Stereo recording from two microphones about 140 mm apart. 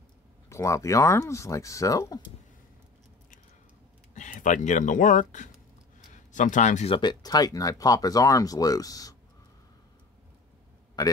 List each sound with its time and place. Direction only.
0.5 s speech: 20° left (ahead or behind)
4.1 s speech: 65° left (ahead or behind)
6.9 s speech: 30° left (ahead or behind)